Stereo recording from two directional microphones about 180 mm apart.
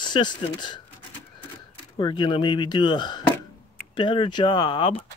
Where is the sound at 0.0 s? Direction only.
25° left (ahead or behind).